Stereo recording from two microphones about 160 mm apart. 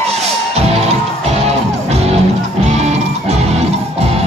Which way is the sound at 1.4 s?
40° right (ahead or behind).